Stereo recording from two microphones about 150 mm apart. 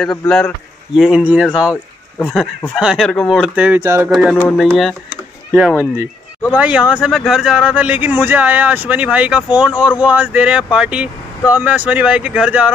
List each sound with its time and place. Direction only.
0.0 s speech: 5° left (ahead or behind)